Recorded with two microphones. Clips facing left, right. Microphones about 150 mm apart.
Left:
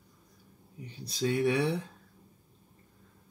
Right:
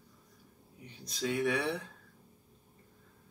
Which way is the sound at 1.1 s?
35° left (ahead or behind).